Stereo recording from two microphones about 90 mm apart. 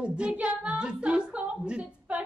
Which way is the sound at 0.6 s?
10° right (ahead or behind).